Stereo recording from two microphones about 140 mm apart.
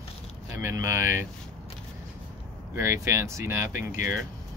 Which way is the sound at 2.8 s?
15° right (ahead or behind).